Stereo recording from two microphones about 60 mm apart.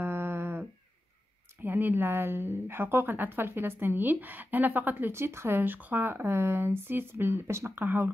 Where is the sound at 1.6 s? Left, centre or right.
Right.